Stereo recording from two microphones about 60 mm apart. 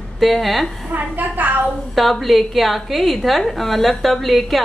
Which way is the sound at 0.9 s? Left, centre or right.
Right.